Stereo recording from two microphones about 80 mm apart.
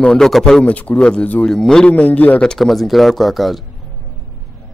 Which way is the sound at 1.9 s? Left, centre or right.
Centre.